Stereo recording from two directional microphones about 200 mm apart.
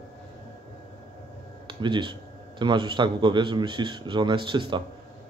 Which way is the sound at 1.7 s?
25° right (ahead or behind).